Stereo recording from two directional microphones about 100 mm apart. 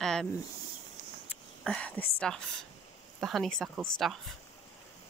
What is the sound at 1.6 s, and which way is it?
Speech, 10° left (ahead or behind).